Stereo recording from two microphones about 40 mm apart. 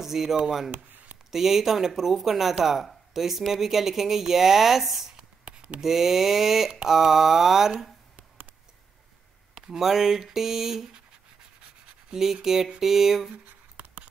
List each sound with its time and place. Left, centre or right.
0.0 s speech: centre
5.4 s a sound: right
5.8 s speech: centre
9.6 s speech: centre
12.1 s speech: centre
13.3 s a sound: right